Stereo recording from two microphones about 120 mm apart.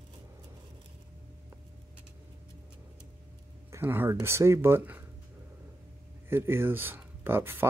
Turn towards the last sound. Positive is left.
turn(degrees=-20)  # may be behind; listen again after turning